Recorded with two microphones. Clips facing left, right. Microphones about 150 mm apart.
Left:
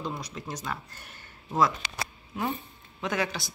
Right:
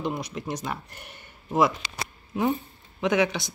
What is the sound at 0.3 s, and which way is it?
Speech, 15° right (ahead or behind).